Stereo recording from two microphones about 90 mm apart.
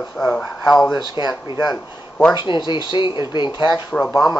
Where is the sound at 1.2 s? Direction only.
60° left (ahead or behind).